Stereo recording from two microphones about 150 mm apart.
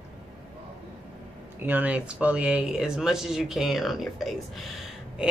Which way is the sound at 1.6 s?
10° right (ahead or behind).